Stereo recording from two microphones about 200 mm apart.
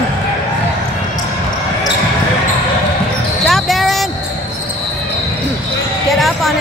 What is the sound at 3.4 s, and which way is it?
Basketball bounce, centre (ahead or behind).